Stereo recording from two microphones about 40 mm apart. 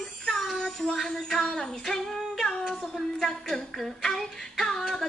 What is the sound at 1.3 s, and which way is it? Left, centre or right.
Female singing, centre.